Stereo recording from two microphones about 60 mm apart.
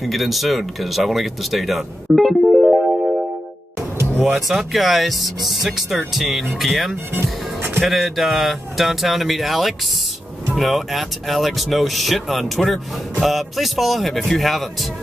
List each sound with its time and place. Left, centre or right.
0.0 s speech: centre
4.5 s speech: centre
7.2 s music: right
7.8 s speech: centre